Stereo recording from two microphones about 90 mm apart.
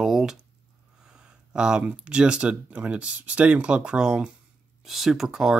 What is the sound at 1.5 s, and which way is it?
Speech, 10° right (ahead or behind).